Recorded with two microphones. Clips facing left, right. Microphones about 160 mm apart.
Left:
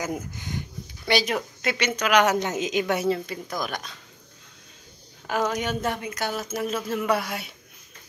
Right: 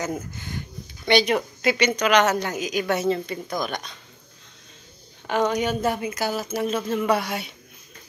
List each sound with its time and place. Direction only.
0.0 s speech: 15° left (ahead or behind)
1.0 s speech: 5° left (ahead or behind)
2.3 s a woman's voice: 20° left (ahead or behind)
2.9 s speech: 10° left (ahead or behind)
5.2 s speech: centre (ahead or behind)